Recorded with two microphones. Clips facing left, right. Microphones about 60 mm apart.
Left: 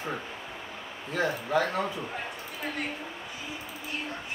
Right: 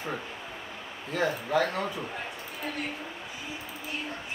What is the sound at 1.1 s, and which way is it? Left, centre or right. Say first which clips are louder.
Speech: even; centre.